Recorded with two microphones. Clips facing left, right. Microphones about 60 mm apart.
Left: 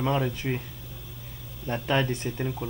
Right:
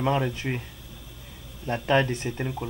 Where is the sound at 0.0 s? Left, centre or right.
Centre.